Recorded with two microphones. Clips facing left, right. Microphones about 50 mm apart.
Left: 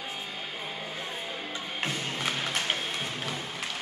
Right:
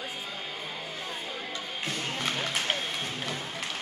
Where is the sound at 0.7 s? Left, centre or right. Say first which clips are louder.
Left 1 dB; centre.